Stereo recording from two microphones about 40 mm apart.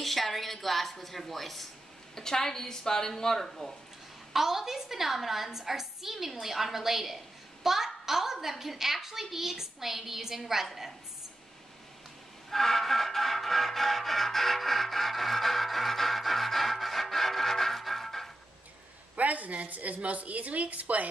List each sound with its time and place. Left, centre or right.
0.0 s a woman's voice: centre
4.3 s a child's voice: centre
12.4 s music: centre
19.1 s a woman's voice: right